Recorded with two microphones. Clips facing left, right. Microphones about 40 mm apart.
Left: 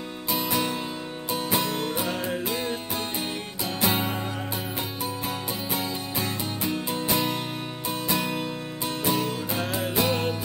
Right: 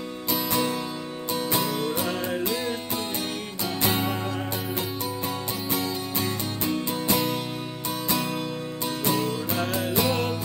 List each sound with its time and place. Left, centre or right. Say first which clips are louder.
0.5 s music: right 2 dB; centre
3.9 s music: right 1 dB; centre
5.8 s music: right 1 dB; centre
8.2 s music: even; centre
9.0 s music: even; centre